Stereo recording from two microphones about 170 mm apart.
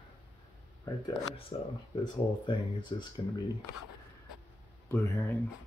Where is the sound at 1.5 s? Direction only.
30° left (ahead or behind).